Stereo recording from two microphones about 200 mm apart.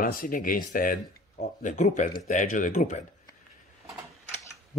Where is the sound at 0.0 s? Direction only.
45° left (ahead or behind).